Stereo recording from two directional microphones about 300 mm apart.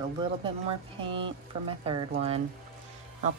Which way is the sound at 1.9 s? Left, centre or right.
Centre.